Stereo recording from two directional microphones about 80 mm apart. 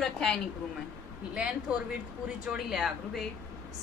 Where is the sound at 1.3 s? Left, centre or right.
Centre.